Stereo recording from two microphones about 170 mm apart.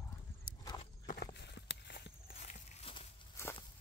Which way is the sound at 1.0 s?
70° left (ahead or behind).